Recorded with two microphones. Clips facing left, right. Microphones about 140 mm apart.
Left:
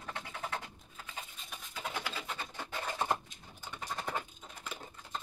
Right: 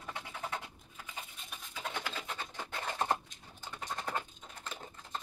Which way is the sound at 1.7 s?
5° left (ahead or behind).